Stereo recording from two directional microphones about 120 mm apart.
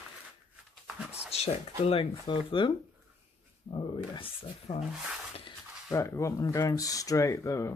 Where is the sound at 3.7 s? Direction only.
40° left (ahead or behind).